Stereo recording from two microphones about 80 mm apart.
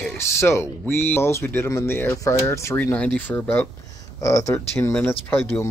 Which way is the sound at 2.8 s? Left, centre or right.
Centre.